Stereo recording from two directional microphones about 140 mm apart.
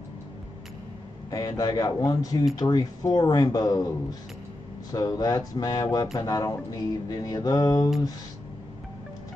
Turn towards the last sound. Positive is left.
turn(degrees=25)  # may be behind; listen again after turning